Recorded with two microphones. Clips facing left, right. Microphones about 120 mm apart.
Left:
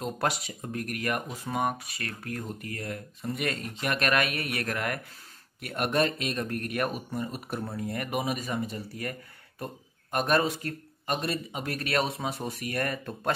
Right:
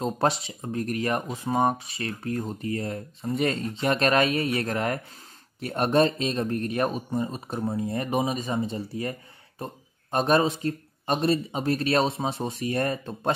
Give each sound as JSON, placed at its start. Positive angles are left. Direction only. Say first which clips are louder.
{"t": 0.0, "sound": "speech", "louder": "right 5 dB", "side_deg": -25}
{"t": 10.1, "sound": "speech", "louder": "right 4 dB", "side_deg": -25}